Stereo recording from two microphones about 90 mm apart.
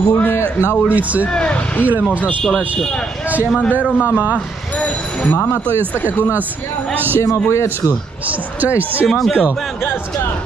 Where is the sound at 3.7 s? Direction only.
15° right (ahead or behind).